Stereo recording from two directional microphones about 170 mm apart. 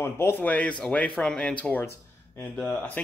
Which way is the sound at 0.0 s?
15° left (ahead or behind).